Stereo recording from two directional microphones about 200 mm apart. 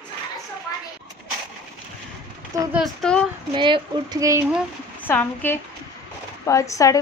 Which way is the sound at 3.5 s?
25° right (ahead or behind).